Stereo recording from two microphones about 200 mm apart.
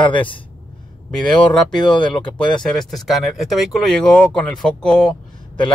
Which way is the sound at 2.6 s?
Centre (ahead or behind).